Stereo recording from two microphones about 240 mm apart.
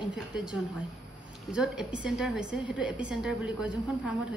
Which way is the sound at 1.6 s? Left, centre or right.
Centre.